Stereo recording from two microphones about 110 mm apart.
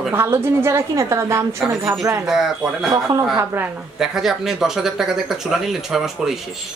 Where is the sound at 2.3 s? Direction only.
5° right (ahead or behind).